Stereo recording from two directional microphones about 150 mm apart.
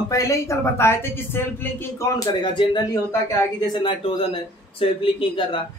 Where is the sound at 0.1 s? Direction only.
20° left (ahead or behind).